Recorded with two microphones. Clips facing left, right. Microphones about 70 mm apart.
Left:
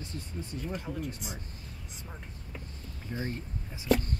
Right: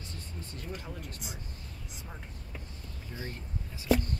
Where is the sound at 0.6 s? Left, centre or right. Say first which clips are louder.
Left 6 dB; centre.